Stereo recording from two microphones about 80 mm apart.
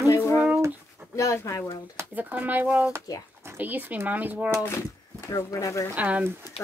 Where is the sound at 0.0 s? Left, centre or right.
Left.